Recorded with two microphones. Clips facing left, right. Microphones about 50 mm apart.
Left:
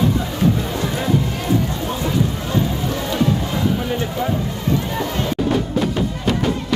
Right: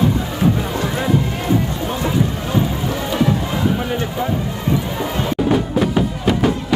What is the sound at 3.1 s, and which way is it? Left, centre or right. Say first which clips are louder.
Music: right 2 dB; centre.